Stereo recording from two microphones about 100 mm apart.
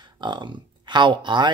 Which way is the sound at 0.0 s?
50° right (ahead or behind).